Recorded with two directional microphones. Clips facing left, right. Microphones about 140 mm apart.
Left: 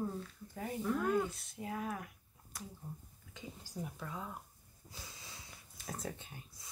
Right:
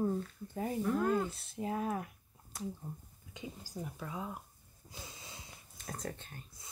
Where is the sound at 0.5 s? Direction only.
30° right (ahead or behind).